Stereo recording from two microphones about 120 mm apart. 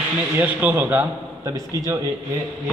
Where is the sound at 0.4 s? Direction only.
15° right (ahead or behind).